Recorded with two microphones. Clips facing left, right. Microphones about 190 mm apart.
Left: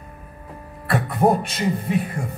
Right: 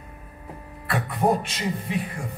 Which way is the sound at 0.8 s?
40° left (ahead or behind).